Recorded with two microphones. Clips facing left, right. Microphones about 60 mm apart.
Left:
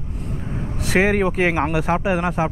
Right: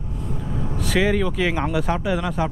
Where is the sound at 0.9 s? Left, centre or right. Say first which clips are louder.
Left 3 dB; left.